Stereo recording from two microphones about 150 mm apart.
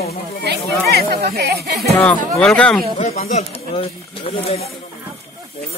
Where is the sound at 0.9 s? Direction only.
90° right.